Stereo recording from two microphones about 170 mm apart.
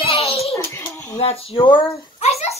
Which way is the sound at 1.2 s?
35° left (ahead or behind).